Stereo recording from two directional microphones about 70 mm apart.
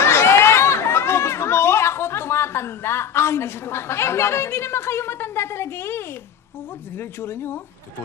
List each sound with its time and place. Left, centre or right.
0.0 s chatter: left
7.0 s speech: left